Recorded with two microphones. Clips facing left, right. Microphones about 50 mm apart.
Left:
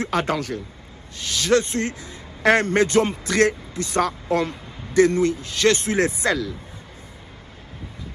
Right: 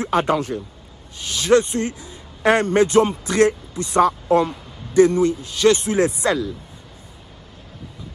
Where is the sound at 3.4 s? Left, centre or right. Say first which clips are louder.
Right 2 dB; left.